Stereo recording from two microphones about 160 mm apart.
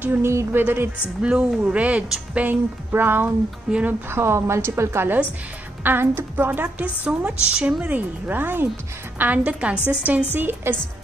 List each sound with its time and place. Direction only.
0.0 s a woman's voice: 15° right (ahead or behind)